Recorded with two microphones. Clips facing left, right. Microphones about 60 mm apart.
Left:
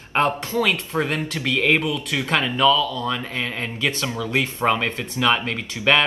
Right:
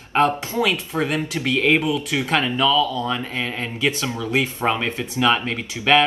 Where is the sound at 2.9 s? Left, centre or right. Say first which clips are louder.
Right 1 dB; right.